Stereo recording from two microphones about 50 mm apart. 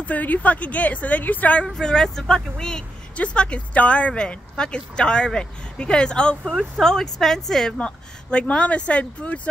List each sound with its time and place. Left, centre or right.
0.0 s a woman's voice: left
1.7 s speech: centre
3.2 s speech: left; by 7.8 s centre
7.8 s speech: left